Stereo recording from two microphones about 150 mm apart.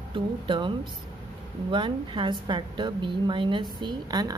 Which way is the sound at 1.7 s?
30° right (ahead or behind).